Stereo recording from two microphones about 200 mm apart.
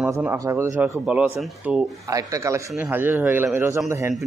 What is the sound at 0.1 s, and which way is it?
Speech, 15° right (ahead or behind).